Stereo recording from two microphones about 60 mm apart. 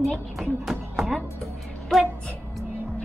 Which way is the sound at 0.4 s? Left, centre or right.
Centre.